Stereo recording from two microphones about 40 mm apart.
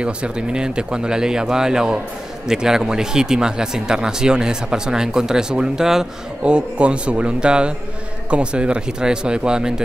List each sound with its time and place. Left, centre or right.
0.0 s speech: right
6.4 s speech: right